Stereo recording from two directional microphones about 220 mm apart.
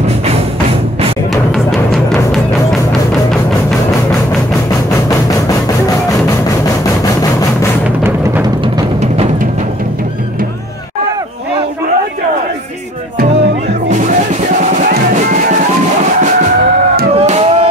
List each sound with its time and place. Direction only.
1.3 s music: centre (ahead or behind)
14.6 s music: 35° right (ahead or behind)
17.2 s a sound: 30° right (ahead or behind)